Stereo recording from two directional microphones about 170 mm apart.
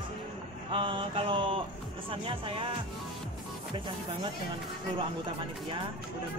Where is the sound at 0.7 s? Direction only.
30° right (ahead or behind).